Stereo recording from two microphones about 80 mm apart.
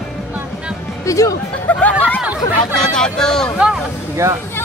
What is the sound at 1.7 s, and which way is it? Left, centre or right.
Speech, centre.